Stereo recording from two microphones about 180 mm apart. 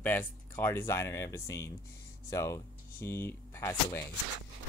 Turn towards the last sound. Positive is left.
turn(degrees=15)  # may be behind; listen again after turning